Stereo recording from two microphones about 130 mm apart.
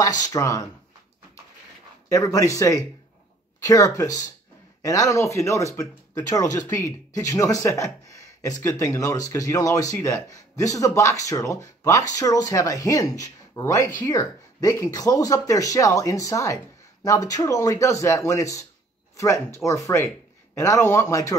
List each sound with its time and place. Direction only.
0.0 s speech: 30° left (ahead or behind)
2.0 s speech: 25° left (ahead or behind)